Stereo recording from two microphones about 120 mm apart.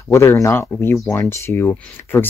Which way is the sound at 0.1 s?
25° left (ahead or behind).